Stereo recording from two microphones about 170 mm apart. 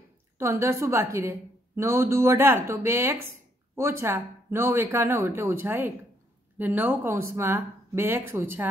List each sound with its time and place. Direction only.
0.4 s speech: 15° right (ahead or behind)